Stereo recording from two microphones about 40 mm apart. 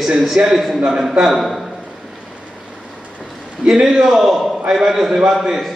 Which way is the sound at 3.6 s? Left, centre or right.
Centre.